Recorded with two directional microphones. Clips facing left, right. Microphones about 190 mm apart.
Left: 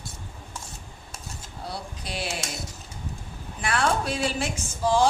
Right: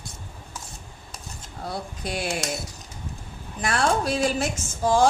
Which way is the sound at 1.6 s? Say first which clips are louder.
Right 4 dB; 50° right (ahead or behind).